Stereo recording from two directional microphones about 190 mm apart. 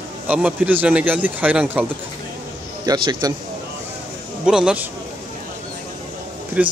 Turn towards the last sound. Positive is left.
turn(degrees=-5)  # may be behind; listen again after turning